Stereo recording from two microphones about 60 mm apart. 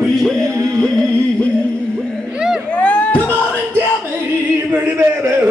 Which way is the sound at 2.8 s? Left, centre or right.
Left.